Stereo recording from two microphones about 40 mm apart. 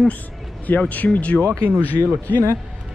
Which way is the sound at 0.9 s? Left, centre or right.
Left.